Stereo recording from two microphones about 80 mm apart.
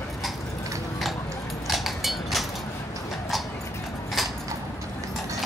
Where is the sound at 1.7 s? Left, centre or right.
Centre.